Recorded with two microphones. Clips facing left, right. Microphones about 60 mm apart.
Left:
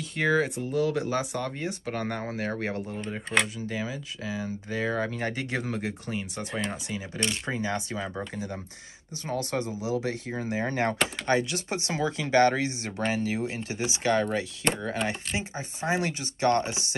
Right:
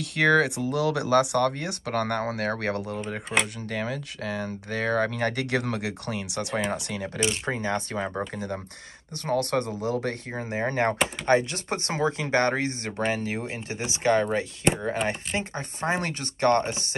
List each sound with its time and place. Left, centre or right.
0.0 s speech: right
6.7 s speech: right
7.4 s speech: right
9.2 s speech: right
10.3 s speech: right
15.0 s speech: right